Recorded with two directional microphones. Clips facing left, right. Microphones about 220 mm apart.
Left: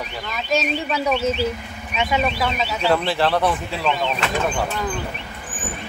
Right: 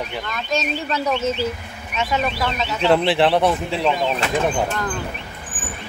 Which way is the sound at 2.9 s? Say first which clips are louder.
Right 4 dB; 20° right (ahead or behind).